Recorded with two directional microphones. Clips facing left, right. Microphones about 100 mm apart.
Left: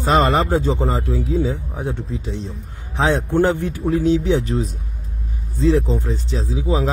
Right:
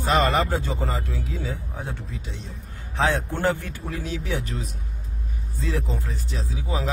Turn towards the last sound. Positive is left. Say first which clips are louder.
# left 8 dB
turn(degrees=25)  # may be behind; listen again after turning